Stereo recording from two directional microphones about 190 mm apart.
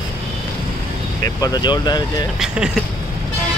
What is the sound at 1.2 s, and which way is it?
Speech, 20° left (ahead or behind).